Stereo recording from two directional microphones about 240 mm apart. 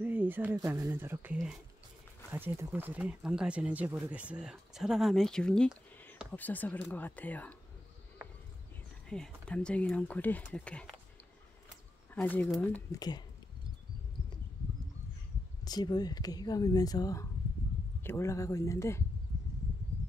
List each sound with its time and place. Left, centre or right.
0.0 s speech: centre
9.1 s speech: centre
12.1 s speech: centre
12.9 s speech: centre
15.6 s speech: centre